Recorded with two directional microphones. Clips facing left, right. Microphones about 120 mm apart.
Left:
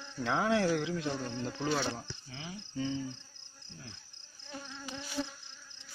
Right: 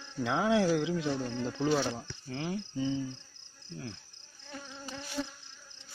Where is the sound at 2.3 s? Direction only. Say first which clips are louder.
Right 13 dB; 50° right (ahead or behind).